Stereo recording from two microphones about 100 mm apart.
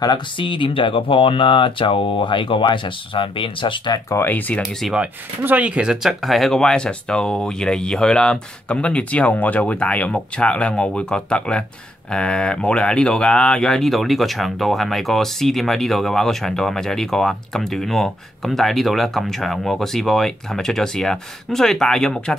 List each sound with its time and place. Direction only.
0.0 s speech: 50° left (ahead or behind)
4.1 s speech: 20° left (ahead or behind)
4.9 s speech: 15° right (ahead or behind); by 22.3 s 5° left (ahead or behind)